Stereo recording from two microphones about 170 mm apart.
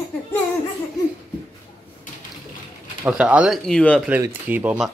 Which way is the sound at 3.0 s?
10° right (ahead or behind).